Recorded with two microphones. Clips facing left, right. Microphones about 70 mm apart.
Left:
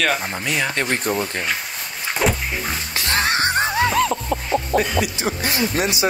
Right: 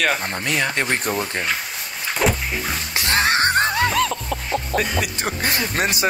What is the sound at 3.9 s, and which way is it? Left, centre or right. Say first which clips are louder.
Music: left 2 dB; left.